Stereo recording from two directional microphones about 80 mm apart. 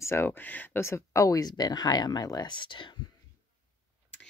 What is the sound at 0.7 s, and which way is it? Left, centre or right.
Speech, left.